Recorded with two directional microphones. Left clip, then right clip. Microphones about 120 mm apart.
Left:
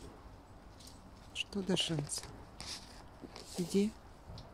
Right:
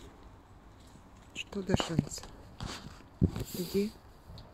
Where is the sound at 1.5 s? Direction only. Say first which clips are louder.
Right 3 dB; 15° left (ahead or behind).